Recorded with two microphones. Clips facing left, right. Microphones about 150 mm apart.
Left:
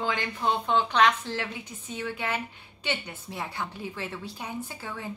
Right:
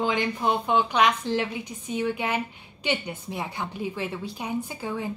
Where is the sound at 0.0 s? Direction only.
15° right (ahead or behind).